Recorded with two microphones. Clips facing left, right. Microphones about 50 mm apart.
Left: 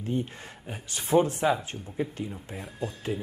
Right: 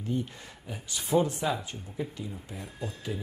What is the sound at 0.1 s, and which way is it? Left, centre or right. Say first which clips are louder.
Speech: left 2 dB; left.